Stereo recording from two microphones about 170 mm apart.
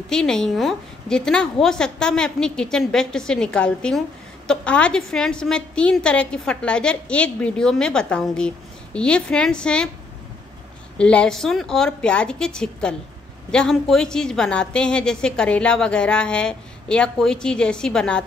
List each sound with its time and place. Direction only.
0.1 s a woman's voice: 5° left (ahead or behind)
11.0 s a woman's voice: 5° left (ahead or behind)